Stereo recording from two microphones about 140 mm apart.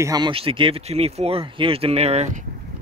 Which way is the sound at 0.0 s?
25° right (ahead or behind).